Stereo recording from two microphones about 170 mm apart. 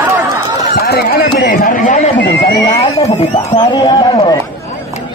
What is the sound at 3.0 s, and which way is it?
Speech, 40° left (ahead or behind).